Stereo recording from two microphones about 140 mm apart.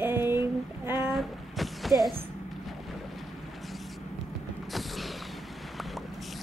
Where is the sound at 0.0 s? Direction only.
15° right (ahead or behind).